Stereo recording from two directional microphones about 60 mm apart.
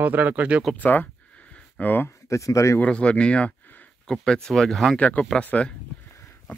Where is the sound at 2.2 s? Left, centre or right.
Left.